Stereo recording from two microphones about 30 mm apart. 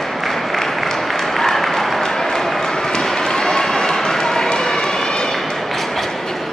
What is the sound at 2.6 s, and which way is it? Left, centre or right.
Run, left.